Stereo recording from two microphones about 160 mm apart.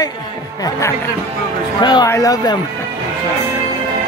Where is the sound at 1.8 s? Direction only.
25° left (ahead or behind).